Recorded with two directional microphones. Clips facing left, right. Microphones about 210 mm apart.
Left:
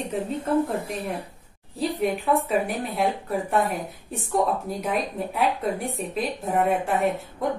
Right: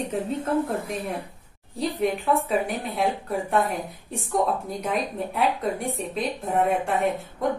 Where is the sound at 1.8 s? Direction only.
Centre (ahead or behind).